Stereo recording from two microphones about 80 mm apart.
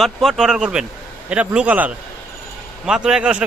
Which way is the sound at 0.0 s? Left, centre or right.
Centre.